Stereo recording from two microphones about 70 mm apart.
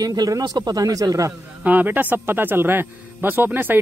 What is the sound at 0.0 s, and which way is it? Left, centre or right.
Speech, right.